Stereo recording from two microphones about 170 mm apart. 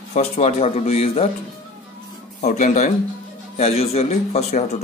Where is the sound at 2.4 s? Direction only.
45° left (ahead or behind).